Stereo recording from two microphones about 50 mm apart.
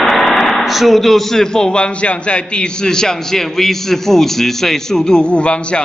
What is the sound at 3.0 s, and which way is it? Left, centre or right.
A man's voice, centre.